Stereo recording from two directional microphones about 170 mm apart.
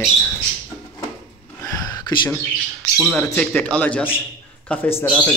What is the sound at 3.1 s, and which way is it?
Speech, 5° left (ahead or behind).